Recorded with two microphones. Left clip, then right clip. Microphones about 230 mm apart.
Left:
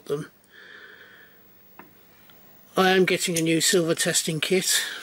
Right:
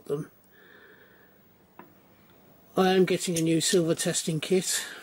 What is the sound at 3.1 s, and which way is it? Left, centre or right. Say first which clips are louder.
Speech: left 3 dB; centre.